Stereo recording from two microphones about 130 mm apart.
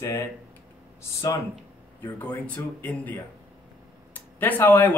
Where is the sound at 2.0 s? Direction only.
15° left (ahead or behind).